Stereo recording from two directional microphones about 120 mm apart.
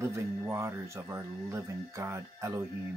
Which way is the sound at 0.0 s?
20° right (ahead or behind).